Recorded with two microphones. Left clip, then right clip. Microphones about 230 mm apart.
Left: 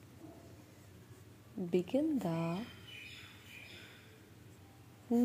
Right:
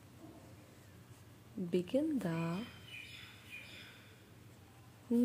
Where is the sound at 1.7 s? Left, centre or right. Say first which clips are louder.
Left 1 dB; centre.